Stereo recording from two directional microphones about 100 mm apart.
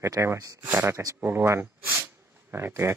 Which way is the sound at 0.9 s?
30° right (ahead or behind).